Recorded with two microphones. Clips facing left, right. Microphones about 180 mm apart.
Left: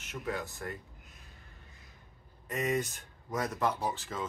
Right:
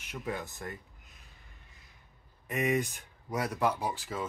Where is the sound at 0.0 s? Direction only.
15° right (ahead or behind).